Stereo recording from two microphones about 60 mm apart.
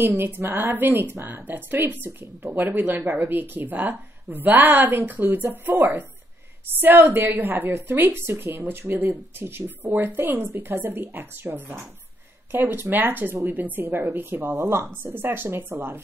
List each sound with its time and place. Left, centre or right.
0.0 s speech: right
8.2 s speech: right